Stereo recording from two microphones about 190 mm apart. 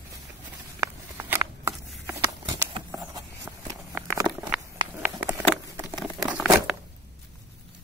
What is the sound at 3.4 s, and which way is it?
Walk, 15° right (ahead or behind).